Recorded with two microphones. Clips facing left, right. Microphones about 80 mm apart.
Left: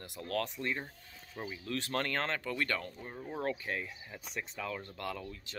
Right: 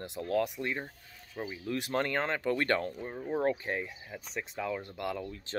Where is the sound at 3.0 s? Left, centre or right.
Centre.